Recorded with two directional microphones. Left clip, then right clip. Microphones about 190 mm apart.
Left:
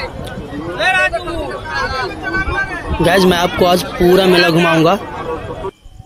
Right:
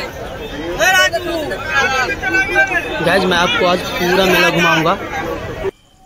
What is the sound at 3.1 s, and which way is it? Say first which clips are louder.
A man's voice: left 2 dB; 35° left (ahead or behind).